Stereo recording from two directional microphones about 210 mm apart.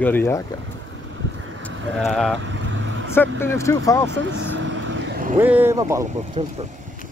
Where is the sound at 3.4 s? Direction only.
15° left (ahead or behind).